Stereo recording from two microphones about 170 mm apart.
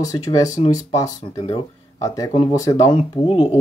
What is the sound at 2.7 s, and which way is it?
Speech, 35° left (ahead or behind).